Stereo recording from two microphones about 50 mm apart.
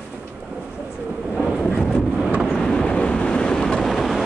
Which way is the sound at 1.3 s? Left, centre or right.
Centre.